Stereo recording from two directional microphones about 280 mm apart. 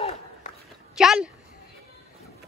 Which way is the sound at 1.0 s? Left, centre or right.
Centre.